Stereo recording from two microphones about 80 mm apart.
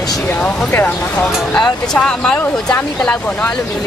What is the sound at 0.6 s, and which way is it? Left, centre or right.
Speech, left.